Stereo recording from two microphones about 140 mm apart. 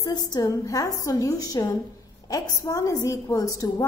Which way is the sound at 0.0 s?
25° left (ahead or behind).